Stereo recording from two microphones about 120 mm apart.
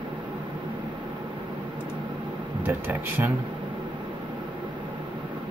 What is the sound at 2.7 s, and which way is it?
Speech, 15° right (ahead or behind).